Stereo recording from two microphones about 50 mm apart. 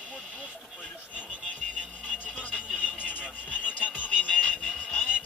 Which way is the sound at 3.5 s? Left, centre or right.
Left.